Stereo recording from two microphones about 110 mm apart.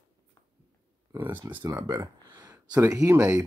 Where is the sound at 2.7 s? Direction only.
35° right (ahead or behind).